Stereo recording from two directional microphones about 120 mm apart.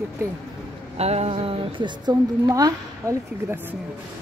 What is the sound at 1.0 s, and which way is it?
Music, 60° right (ahead or behind).